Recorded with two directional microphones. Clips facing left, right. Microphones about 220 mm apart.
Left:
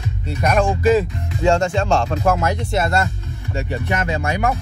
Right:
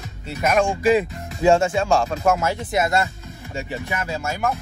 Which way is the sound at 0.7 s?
15° right (ahead or behind).